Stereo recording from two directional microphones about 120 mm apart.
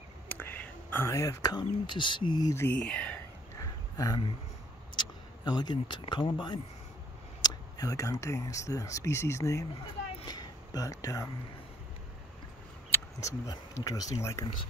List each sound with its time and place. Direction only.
0.3 s speech: 15° left (ahead or behind); by 2.5 s 40° left (ahead or behind)
2.5 s speech: 15° left (ahead or behind)
3.5 s a sound: 30° left (ahead or behind)
7.4 s speech: 30° left (ahead or behind)
10.2 s a sound: 35° left (ahead or behind)
12.9 s speech: 25° left (ahead or behind)